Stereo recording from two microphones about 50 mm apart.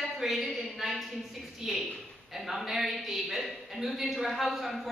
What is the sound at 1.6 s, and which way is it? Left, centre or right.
A man's voice, centre.